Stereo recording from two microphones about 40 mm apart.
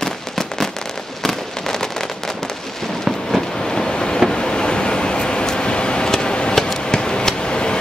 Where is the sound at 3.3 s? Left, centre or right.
Centre.